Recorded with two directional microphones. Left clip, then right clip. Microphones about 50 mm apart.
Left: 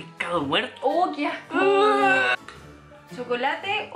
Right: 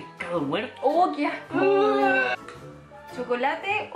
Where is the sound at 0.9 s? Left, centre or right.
Right.